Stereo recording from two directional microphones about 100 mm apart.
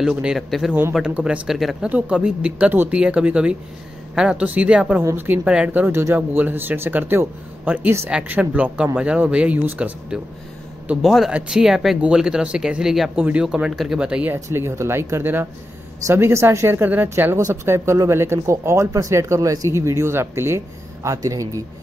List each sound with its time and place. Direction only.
0.0 s speech: 10° right (ahead or behind)
1.9 s speech: 10° right (ahead or behind)
5.0 s speech: 20° right (ahead or behind)
14.3 s speech: 25° right (ahead or behind)